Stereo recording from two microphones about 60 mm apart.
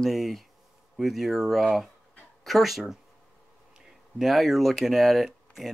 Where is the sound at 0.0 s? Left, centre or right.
Centre.